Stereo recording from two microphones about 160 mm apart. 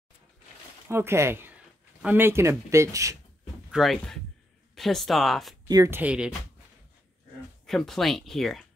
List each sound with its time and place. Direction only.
0.8 s speech: 15° right (ahead or behind)
3.7 s speech: centre (ahead or behind)
5.7 s speech: 25° right (ahead or behind)
5.9 s speech: 5° right (ahead or behind)
7.6 s speech: centre (ahead or behind)